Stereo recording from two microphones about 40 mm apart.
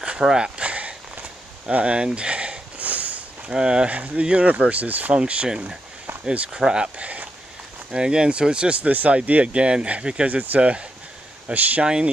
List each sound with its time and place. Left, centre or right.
0.0 s a sound: right
0.6 s walk: right
1.7 s a sound: right
3.5 s speech: right
5.1 s speech: right
6.5 s speech: right
10.3 s speech: right
10.6 s speech: right
11.5 s speech: right